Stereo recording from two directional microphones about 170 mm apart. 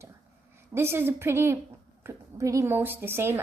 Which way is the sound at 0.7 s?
15° right (ahead or behind).